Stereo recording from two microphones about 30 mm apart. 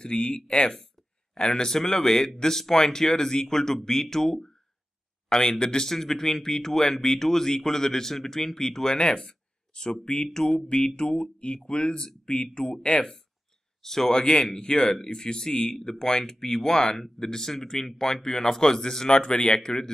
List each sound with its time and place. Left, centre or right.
0.0 s speech: left
8.9 s speech: left
9.2 s a sound: centre
10.0 s speech: left
12.6 s speech: centre
14.1 s speech: left